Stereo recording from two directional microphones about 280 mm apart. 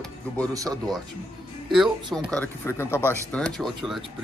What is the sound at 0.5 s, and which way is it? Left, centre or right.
Speech, centre.